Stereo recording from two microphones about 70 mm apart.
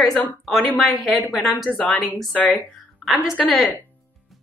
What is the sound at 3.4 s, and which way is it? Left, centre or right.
Speech, centre.